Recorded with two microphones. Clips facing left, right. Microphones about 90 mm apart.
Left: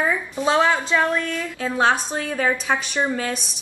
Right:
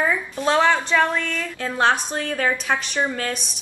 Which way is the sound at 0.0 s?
5° left (ahead or behind).